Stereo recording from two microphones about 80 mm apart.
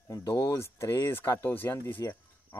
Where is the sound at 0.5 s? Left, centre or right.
Left.